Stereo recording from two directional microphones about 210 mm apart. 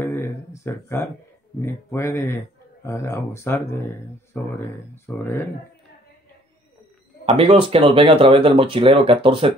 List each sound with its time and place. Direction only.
0.0 s a sound: 10° left (ahead or behind)
0.7 s speech: 10° left (ahead or behind)
7.2 s speech: 25° right (ahead or behind)